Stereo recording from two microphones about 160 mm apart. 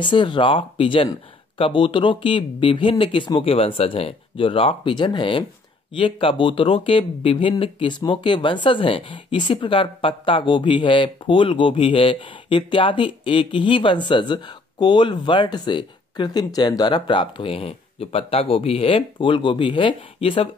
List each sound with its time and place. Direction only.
0.0 s speech: 30° left (ahead or behind)